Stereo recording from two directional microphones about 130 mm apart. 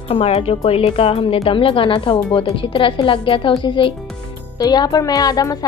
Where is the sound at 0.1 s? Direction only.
45° left (ahead or behind).